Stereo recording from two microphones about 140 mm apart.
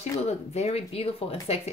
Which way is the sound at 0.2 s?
50° left (ahead or behind).